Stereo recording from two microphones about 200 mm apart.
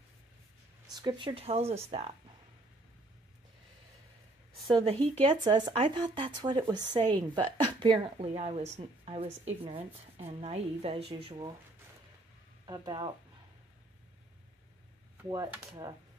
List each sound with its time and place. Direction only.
0.9 s speech: 20° right (ahead or behind)
4.6 s speech: 25° right (ahead or behind)
12.6 s speech: 20° right (ahead or behind)
15.2 s speech: 15° right (ahead or behind)